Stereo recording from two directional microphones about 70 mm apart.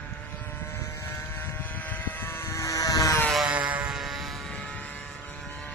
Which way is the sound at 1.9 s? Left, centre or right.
Left.